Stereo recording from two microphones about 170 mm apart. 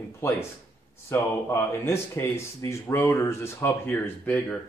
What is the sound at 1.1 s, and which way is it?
Speech, 15° left (ahead or behind).